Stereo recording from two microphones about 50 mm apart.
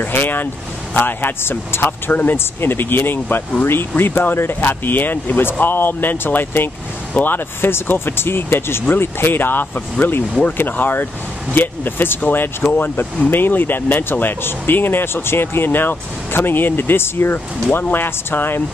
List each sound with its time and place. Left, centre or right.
0.0 s speech: left